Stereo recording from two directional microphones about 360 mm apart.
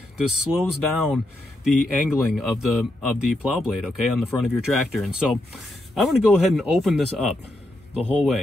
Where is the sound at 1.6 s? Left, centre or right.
Centre.